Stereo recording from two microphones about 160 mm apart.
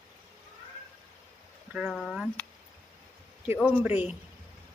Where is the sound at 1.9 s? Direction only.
Centre (ahead or behind).